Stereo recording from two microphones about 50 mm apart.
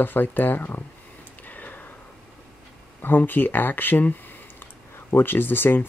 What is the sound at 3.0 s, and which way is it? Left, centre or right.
Speech, left.